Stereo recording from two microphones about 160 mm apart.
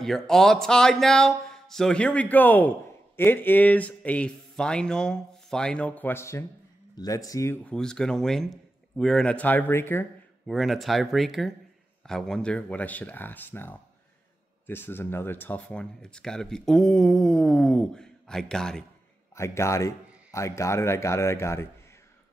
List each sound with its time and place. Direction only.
0.0 s speech: centre (ahead or behind); by 7.5 s 20° left (ahead or behind)
7.6 s speech: 5° left (ahead or behind)
10.4 s speech: centre (ahead or behind)
19.3 s speech: 15° left (ahead or behind)